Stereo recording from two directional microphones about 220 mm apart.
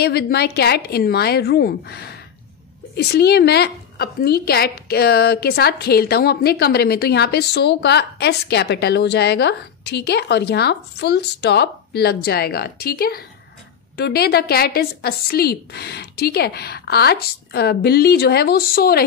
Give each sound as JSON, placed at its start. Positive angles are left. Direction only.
{"t": 0.0, "sound": "a woman's voice", "side_deg": 45}